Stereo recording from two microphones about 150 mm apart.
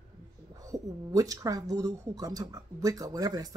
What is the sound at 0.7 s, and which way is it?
Speech, 25° right (ahead or behind).